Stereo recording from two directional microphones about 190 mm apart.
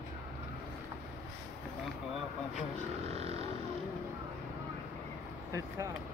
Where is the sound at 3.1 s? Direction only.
35° right (ahead or behind).